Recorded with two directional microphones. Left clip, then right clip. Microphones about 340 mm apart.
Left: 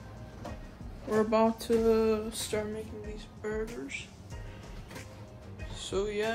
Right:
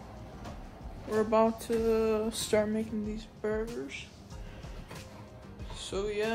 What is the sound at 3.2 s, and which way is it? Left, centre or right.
Music, centre.